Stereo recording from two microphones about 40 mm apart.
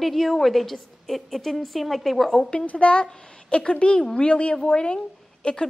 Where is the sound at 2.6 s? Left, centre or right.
Left.